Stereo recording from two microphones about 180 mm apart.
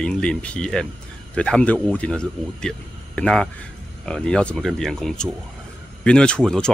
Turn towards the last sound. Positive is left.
turn(degrees=5)  # may be behind; listen again after turning